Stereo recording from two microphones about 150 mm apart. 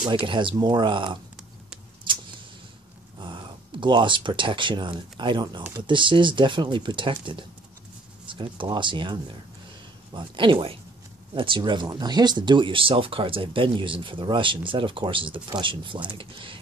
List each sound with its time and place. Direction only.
0.1 s speech: 35° right (ahead or behind)
3.2 s speech: 30° right (ahead or behind)